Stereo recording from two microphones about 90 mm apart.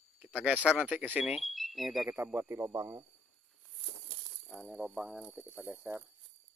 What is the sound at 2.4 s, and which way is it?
Speech, 25° right (ahead or behind).